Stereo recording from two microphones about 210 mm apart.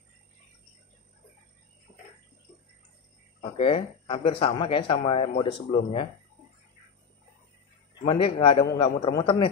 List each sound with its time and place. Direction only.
3.3 s speech: 25° left (ahead or behind)
8.1 s speech: 25° left (ahead or behind)